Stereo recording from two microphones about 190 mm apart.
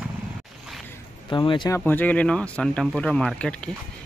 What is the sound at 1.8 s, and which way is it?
Speech, 10° left (ahead or behind).